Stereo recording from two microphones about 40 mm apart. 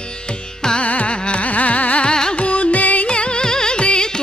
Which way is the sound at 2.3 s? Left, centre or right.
Left.